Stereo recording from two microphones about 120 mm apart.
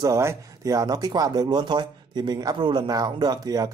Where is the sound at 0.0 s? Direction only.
25° right (ahead or behind).